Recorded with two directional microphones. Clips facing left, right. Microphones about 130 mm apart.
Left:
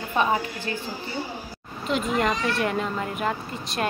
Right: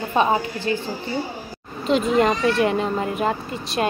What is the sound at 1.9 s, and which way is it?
A woman's voice, 25° right (ahead or behind).